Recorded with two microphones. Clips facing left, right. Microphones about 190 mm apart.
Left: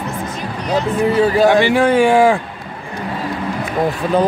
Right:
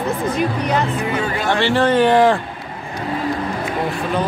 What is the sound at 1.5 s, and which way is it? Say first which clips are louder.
Speech: left 3 dB; 10° left (ahead or behind).